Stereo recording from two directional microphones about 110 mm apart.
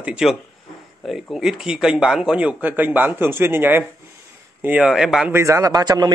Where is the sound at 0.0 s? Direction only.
5° right (ahead or behind).